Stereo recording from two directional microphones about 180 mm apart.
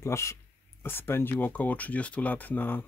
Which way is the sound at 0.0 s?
15° left (ahead or behind).